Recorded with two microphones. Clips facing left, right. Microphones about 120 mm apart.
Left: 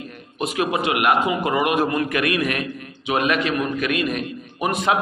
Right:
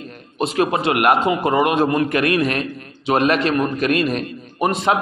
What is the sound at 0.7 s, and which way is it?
A man's voice, 30° right (ahead or behind).